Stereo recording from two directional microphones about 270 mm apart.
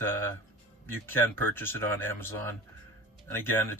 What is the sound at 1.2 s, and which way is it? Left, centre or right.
Speech, centre.